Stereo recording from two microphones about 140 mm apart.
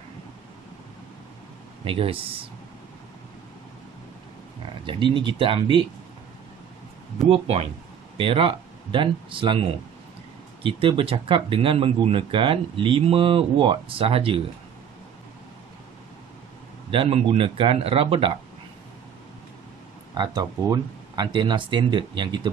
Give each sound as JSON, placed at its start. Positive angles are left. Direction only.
{"t": 1.9, "sound": "speech", "side_deg": -40}
{"t": 4.8, "sound": "speech", "side_deg": -35}
{"t": 7.2, "sound": "speech", "side_deg": -45}
{"t": 16.9, "sound": "speech", "side_deg": -40}
{"t": 20.2, "sound": "speech", "side_deg": -30}